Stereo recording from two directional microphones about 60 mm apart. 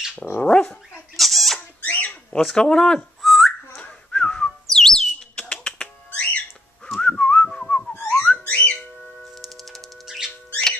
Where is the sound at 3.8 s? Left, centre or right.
Centre.